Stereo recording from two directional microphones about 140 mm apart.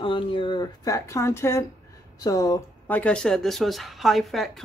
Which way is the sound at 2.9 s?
10° left (ahead or behind).